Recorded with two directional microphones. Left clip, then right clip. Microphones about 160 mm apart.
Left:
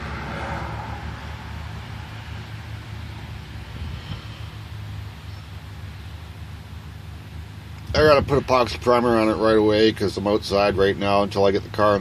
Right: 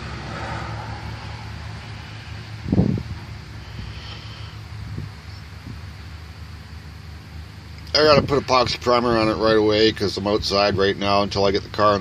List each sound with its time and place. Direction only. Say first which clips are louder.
0.3 s vehicle: right 1 dB; 15° right (ahead or behind)
7.9 s speech: right 1 dB; centre (ahead or behind)